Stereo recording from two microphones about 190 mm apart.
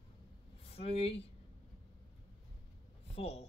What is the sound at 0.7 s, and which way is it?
Speech, 30° left (ahead or behind).